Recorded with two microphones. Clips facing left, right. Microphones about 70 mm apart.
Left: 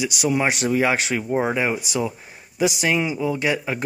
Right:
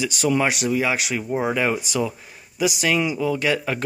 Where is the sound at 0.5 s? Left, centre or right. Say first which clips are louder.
Left 2 dB; left.